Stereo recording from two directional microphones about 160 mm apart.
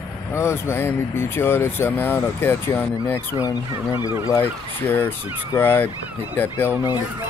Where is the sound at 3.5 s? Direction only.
25° left (ahead or behind).